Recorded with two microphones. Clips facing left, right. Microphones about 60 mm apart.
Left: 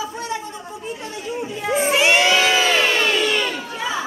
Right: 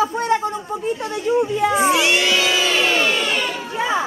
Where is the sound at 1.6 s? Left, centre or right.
Right.